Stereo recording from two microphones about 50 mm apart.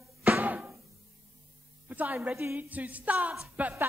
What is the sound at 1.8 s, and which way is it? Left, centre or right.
Speech, right.